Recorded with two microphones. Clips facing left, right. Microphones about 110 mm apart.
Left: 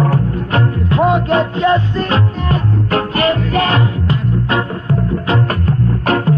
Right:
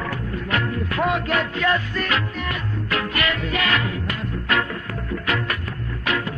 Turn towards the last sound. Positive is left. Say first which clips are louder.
# left 11 dB
turn(degrees=40)  # may be behind; listen again after turning